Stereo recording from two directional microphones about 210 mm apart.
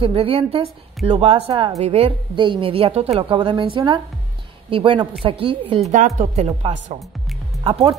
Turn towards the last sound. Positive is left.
turn(degrees=-25)  # may be behind; listen again after turning